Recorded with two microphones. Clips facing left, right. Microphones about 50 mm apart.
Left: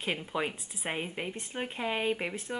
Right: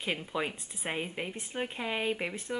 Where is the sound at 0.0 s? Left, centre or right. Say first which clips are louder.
Left 1 dB; centre.